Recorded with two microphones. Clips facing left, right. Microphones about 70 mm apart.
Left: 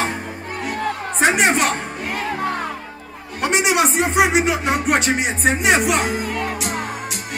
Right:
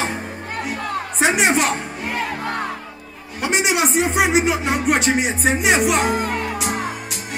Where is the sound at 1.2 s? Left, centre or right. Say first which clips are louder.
Left 1 dB; centre.